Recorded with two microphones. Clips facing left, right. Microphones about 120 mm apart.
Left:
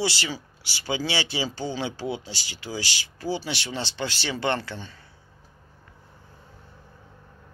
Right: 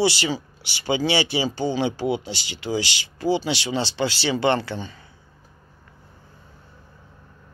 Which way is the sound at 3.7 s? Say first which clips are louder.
Right 7 dB; 85° right.